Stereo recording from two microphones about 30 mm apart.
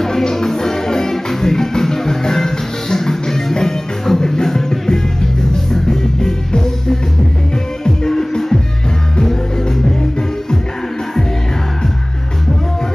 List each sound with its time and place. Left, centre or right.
0.0 s music: centre